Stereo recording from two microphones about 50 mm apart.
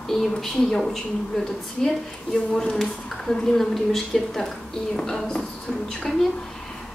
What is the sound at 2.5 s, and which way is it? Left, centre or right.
A woman's voice, centre.